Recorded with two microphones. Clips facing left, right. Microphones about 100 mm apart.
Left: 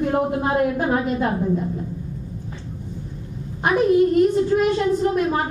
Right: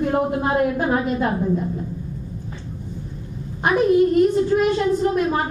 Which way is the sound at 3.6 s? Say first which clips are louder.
Even; 15° right (ahead or behind).